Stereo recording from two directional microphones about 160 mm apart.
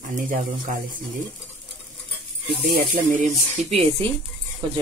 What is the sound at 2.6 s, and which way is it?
Speech, 70° right (ahead or behind).